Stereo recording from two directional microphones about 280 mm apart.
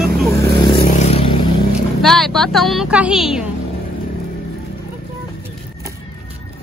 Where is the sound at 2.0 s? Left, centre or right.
Centre.